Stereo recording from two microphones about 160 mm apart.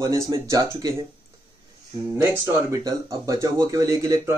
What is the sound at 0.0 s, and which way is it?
Speech, 20° right (ahead or behind).